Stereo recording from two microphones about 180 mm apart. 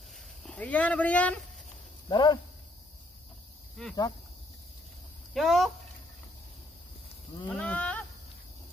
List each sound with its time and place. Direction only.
0.5 s speech: 5° left (ahead or behind)
2.0 s speech: 25° left (ahead or behind)
5.3 s speech: centre (ahead or behind)
7.4 s a sound: 5° left (ahead or behind)